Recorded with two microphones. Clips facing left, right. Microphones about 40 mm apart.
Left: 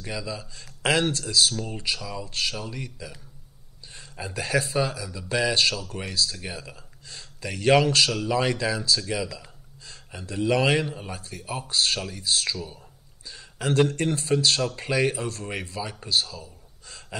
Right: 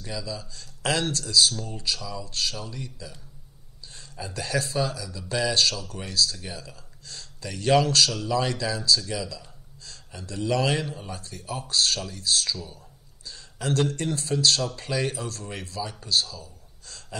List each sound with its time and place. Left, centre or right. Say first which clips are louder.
0.0 s speech: left 1 dB; left
3.9 s a man's voice: left 2 dB; left